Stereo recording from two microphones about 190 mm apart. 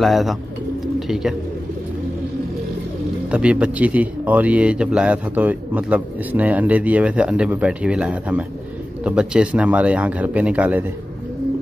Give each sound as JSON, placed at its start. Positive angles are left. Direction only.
{"t": 0.0, "sound": "speech", "side_deg": 0}
{"t": 0.9, "sound": "bird", "side_deg": 0}
{"t": 3.3, "sound": "a man's voice", "side_deg": -5}